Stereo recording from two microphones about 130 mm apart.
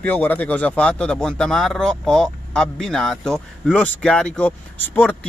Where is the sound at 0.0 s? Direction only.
15° left (ahead or behind).